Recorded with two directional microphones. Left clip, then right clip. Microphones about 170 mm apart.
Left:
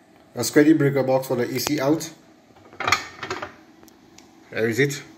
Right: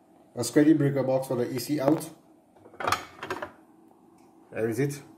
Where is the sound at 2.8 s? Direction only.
15° right (ahead or behind).